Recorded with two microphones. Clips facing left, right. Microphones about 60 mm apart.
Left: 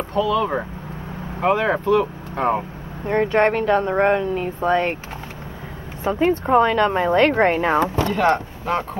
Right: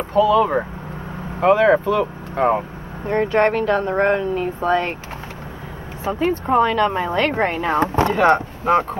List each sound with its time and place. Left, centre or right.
0.1 s speech: centre
0.4 s speech: centre
1.4 s speech: centre
3.3 s speech: centre
6.1 s speech: centre
7.8 s speech: right
8.1 s speech: centre